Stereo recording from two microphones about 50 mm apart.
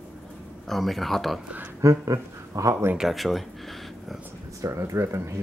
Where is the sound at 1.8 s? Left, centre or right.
Right.